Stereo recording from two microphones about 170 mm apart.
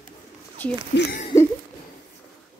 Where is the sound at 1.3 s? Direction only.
20° left (ahead or behind).